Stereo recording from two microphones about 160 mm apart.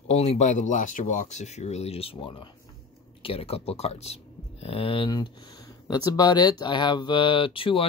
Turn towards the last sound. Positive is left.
turn(degrees=35)  # may be behind; listen again after turning